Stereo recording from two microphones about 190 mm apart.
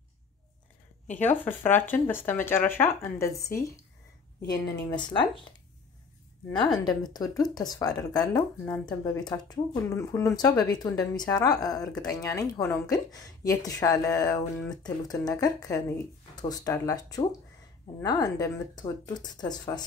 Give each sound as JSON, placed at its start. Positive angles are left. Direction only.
{"t": 1.1, "sound": "a woman's voice", "side_deg": 10}
{"t": 4.5, "sound": "speech", "side_deg": 25}
{"t": 6.5, "sound": "a woman's voice", "side_deg": 20}
{"t": 9.2, "sound": "a woman's voice", "side_deg": 20}